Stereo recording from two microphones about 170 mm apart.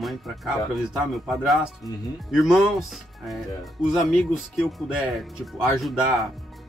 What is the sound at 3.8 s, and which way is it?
Speech, centre (ahead or behind).